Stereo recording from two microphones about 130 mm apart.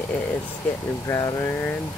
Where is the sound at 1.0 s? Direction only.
25° left (ahead or behind).